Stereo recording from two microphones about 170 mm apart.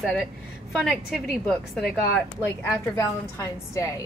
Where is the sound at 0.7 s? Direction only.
Centre (ahead or behind).